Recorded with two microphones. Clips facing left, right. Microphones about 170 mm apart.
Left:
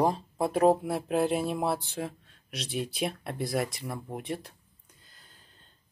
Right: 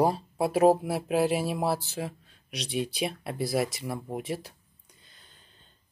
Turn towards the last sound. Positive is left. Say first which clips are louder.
# even
turn(degrees=5)  # may be behind; listen again after turning